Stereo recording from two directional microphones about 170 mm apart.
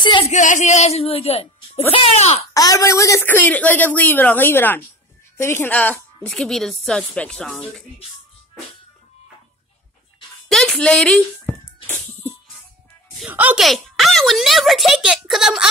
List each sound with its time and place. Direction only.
0.0 s music: 25° left (ahead or behind)
0.3 s speech: 45° left (ahead or behind)
2.5 s a woman's voice: 20° left (ahead or behind); by 7.6 s 5° left (ahead or behind)
10.5 s speech: 5° left (ahead or behind)
11.9 s music: 10° left (ahead or behind)
13.2 s speech: 10° right (ahead or behind)